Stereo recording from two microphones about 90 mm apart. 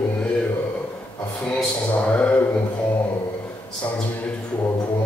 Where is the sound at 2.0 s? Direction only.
15° left (ahead or behind).